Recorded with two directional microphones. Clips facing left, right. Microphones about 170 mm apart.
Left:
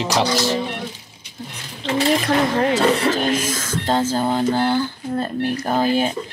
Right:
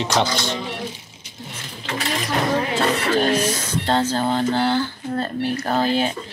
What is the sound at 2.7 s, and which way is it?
Speech, 45° left (ahead or behind).